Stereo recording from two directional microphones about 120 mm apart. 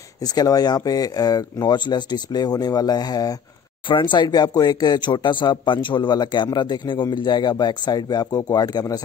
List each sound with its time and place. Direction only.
0.2 s speech: 30° left (ahead or behind)